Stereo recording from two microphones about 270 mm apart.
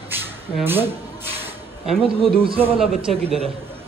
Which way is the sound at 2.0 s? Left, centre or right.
Right.